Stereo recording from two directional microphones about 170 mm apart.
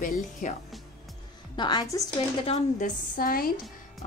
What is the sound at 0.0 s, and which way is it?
Speech, 50° left (ahead or behind).